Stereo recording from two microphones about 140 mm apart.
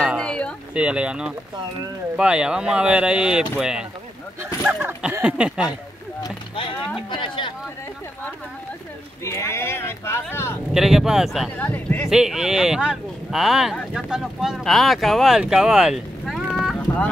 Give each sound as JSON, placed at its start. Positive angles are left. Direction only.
{"t": 0.2, "sound": "a sound", "side_deg": 5}
{"t": 0.7, "sound": "speech", "side_deg": -10}
{"t": 7.1, "sound": "speech", "side_deg": 35}
{"t": 9.2, "sound": "speech", "side_deg": 20}
{"t": 10.7, "sound": "speech", "side_deg": 0}
{"t": 11.5, "sound": "speech", "side_deg": 10}
{"t": 12.1, "sound": "speech", "side_deg": -5}
{"t": 16.8, "sound": "a sound", "side_deg": 15}